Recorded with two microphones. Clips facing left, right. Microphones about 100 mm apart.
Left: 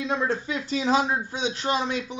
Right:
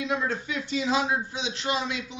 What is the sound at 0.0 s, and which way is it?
Speech, 30° left (ahead or behind).